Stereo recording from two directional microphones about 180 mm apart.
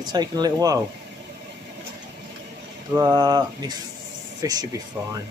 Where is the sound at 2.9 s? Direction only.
20° right (ahead or behind).